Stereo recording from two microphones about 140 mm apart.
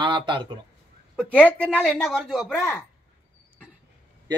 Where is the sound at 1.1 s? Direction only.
5° left (ahead or behind).